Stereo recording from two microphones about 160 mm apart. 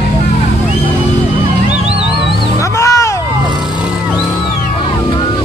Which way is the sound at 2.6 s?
20° left (ahead or behind).